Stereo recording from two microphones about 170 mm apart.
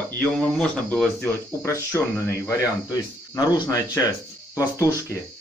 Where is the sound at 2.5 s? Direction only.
20° left (ahead or behind).